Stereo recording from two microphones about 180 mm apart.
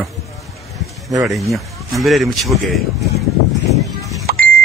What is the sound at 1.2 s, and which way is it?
Speech, centre (ahead or behind).